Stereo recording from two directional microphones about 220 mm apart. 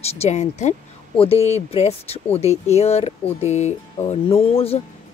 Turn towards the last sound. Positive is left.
turn(degrees=25)  # may be behind; listen again after turning